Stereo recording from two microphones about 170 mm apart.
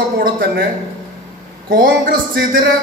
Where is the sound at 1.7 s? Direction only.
60° right (ahead or behind).